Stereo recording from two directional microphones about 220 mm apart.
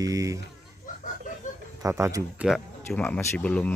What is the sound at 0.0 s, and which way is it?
Speech, 15° right (ahead or behind).